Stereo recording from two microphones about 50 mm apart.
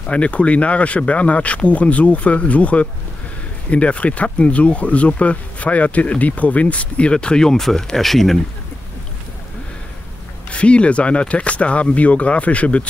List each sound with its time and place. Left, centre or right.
0.1 s speech: left; by 8.4 s centre
10.5 s speech: left